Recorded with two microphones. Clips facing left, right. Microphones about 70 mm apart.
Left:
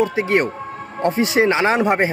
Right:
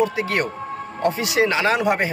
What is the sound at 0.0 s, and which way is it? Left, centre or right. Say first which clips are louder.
Speech: left 3 dB; left.